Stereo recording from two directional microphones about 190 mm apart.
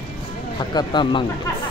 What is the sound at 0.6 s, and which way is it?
Speech, 20° left (ahead or behind).